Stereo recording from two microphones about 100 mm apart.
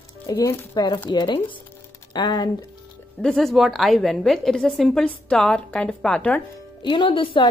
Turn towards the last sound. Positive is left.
turn(degrees=60)  # may be behind; listen again after turning